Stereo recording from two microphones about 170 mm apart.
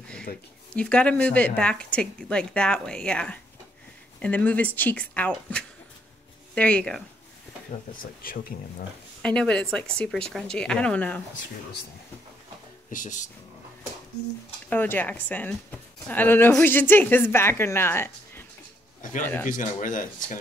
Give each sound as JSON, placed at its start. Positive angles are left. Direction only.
{"t": 0.7, "sound": "speech", "side_deg": 5}
{"t": 8.0, "sound": "speech", "side_deg": 60}
{"t": 9.2, "sound": "speech", "side_deg": 5}
{"t": 12.9, "sound": "speech", "side_deg": 45}
{"t": 14.7, "sound": "speech", "side_deg": 10}
{"t": 18.9, "sound": "a man's voice", "side_deg": 50}